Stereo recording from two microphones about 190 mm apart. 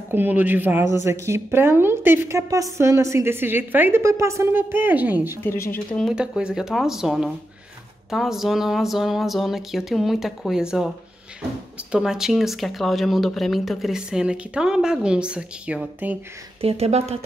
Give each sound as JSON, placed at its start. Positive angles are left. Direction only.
{"t": 0.1, "sound": "a woman's voice", "side_deg": -10}
{"t": 5.4, "sound": "speech", "side_deg": 10}
{"t": 6.0, "sound": "speech", "side_deg": -5}
{"t": 11.9, "sound": "speech", "side_deg": -5}
{"t": 16.6, "sound": "speech", "side_deg": -35}